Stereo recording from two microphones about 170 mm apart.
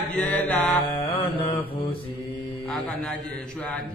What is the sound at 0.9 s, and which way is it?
Mantra, 30° left (ahead or behind).